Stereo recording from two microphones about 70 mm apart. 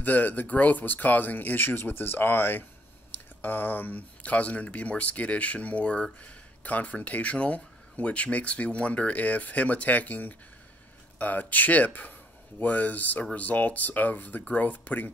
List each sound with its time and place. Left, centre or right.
0.0 s speech: left